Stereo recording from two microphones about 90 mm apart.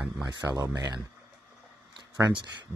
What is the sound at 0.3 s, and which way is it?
Speech, 45° right (ahead or behind).